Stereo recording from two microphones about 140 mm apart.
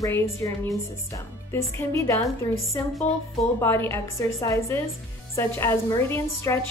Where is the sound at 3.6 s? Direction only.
15° left (ahead or behind).